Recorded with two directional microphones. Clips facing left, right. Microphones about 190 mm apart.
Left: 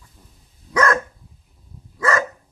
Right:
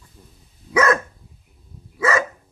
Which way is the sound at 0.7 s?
5° right (ahead or behind).